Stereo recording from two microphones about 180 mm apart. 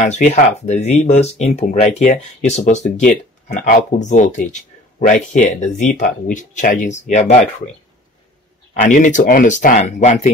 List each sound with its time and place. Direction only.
0.0 s speech: 40° left (ahead or behind)
8.8 s speech: 45° left (ahead or behind)